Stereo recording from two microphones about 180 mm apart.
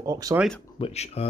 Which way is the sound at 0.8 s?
35° left (ahead or behind).